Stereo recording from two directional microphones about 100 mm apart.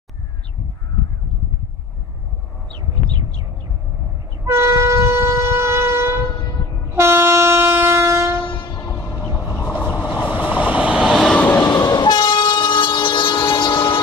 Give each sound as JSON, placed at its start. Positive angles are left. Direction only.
{"t": 4.5, "sound": "train", "side_deg": -30}
{"t": 10.0, "sound": "vehicle", "side_deg": -15}
{"t": 11.3, "sound": "train", "side_deg": 15}
{"t": 11.6, "sound": "train", "side_deg": 40}